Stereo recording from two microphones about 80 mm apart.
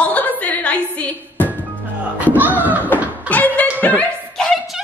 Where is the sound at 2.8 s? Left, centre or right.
Left.